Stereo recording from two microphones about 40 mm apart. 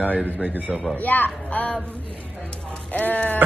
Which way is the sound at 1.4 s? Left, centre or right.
Left.